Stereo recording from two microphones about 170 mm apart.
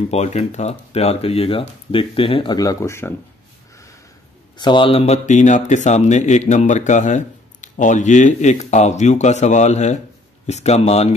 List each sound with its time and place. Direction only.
0.1 s speech: 40° left (ahead or behind); by 3.2 s 15° left (ahead or behind)
4.6 s speech: 30° left (ahead or behind)